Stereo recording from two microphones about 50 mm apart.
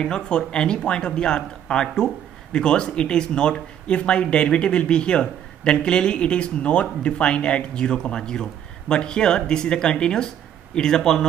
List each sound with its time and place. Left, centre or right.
0.0 s speech: centre